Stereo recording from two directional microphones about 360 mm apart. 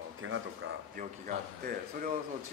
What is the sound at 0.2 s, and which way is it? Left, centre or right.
Speech, right.